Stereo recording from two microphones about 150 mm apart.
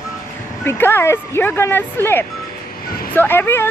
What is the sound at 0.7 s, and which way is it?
Speech, 15° left (ahead or behind).